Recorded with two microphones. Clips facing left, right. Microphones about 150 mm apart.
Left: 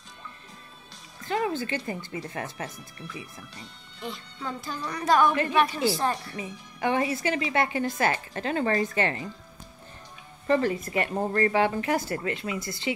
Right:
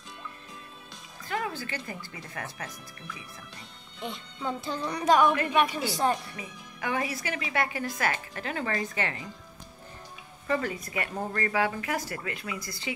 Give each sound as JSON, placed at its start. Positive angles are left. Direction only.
{"t": 1.3, "sound": "a woman's voice", "side_deg": 25}
{"t": 4.0, "sound": "a woman's voice", "side_deg": -20}
{"t": 6.3, "sound": "a woman's voice", "side_deg": 30}
{"t": 10.4, "sound": "a woman's voice", "side_deg": 35}